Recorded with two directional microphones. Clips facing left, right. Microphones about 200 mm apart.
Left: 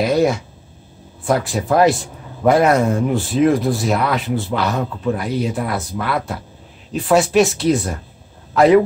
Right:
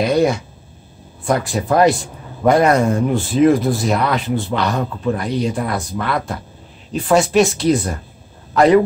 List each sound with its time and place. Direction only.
0.0 s a man's voice: centre (ahead or behind)